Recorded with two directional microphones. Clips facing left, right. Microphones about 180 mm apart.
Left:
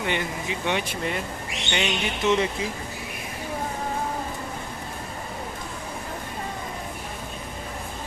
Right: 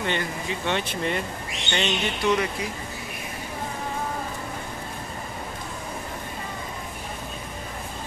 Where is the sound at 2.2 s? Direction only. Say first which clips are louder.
Left 1 dB; 25° left (ahead or behind).